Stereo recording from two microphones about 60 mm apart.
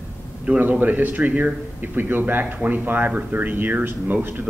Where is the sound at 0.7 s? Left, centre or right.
Right.